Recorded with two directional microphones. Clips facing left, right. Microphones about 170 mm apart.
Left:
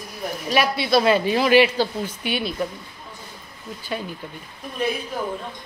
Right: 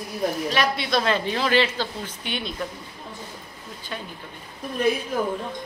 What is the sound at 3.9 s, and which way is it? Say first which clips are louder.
Speech: left 6 dB; 15° left (ahead or behind).